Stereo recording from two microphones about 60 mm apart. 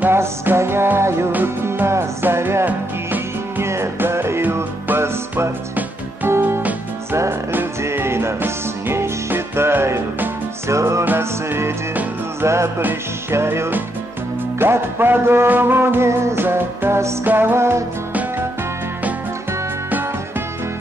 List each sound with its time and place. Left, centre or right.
0.1 s music: right
1.3 s music: right
2.6 s music: right
3.6 s music: right
11.1 s music: right
16.3 s music: right
17.6 s music: right